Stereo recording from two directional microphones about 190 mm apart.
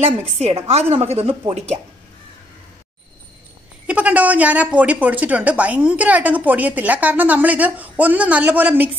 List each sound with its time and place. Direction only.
0.4 s a woman's voice: 35° right (ahead or behind)
3.8 s a woman's voice: 5° right (ahead or behind)